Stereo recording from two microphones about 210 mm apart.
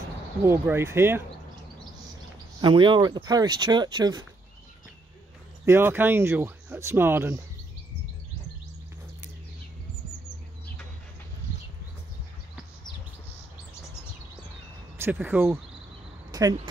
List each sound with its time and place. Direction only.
0.5 s speech: 10° right (ahead or behind)
2.6 s speech: 20° right (ahead or behind)
5.7 s speech: 10° right (ahead or behind)
15.0 s speech: 10° right (ahead or behind)
16.3 s a sound: 20° right (ahead or behind)